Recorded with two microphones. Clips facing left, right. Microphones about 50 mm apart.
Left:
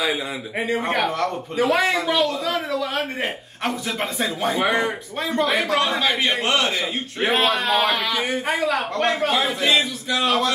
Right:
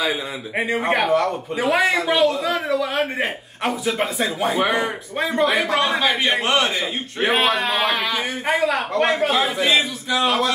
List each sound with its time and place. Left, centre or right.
0.6 s a man's voice: centre
5.2 s a man's voice: centre